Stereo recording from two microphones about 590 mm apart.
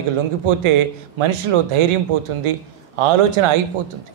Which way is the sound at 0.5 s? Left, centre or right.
Right.